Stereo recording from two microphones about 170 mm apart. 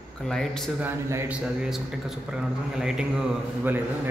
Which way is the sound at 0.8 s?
15° right (ahead or behind).